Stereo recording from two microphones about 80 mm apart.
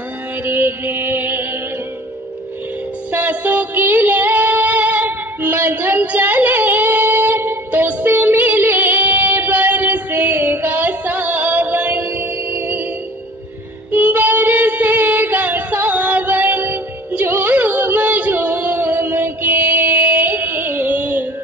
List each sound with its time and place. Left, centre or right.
0.4 s music: right
3.1 s music: right
13.9 s child singing: right